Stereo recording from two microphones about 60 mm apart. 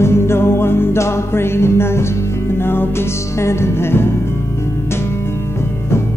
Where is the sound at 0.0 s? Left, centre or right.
Left.